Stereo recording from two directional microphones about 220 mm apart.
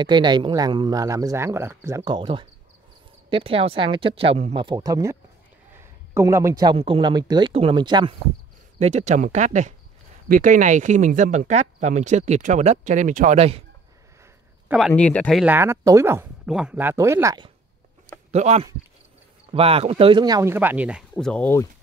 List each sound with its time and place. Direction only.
0.0 s speech: 20° right (ahead or behind)
6.1 s speech: 15° right (ahead or behind); by 13.6 s 30° right (ahead or behind)
14.7 s speech: centre (ahead or behind)
15.4 s speech: 10° right (ahead or behind)
18.3 s speech: 30° right (ahead or behind); by 21.6 s 10° left (ahead or behind)